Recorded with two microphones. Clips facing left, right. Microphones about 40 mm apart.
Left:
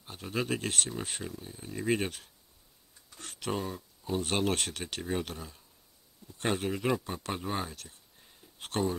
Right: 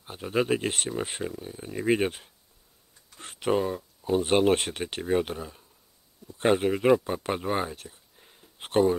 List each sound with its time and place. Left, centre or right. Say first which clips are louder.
0.0 s speech: right 7 dB; centre